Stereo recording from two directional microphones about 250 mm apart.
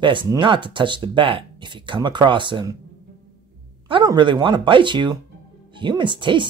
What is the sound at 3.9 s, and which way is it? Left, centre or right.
Speech, centre.